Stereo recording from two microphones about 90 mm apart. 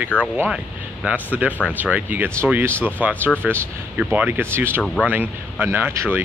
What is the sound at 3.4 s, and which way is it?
Speech, 10° right (ahead or behind).